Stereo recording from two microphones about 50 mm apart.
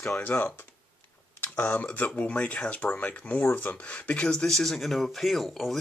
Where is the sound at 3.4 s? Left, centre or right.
Left.